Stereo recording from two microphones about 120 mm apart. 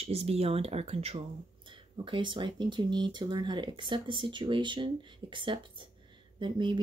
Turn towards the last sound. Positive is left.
turn(degrees=-40)  # may be behind; listen again after turning